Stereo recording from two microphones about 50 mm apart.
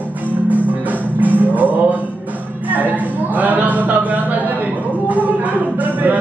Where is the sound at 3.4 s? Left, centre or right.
Right.